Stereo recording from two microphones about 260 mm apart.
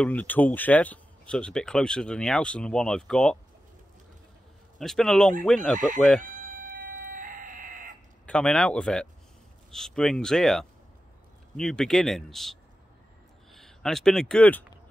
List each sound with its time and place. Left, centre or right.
0.0 s speech: centre
4.7 s speech: centre
6.6 s a sound: right
8.3 s speech: centre